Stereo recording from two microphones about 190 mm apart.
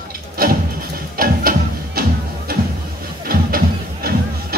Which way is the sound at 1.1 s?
50° right (ahead or behind).